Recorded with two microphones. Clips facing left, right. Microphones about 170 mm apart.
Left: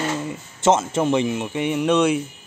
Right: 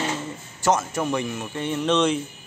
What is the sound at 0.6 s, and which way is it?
Speech, 25° left (ahead or behind).